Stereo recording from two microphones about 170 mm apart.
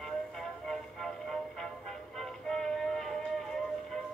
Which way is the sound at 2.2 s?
Centre (ahead or behind).